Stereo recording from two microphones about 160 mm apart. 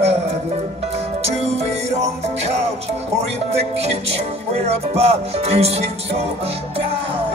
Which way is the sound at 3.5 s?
40° right (ahead or behind).